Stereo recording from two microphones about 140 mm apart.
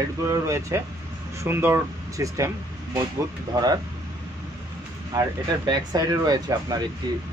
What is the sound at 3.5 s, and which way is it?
Speech, 30° right (ahead or behind).